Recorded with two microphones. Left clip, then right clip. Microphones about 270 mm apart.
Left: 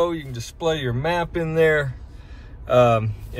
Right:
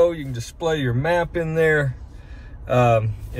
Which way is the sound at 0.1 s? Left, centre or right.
Left.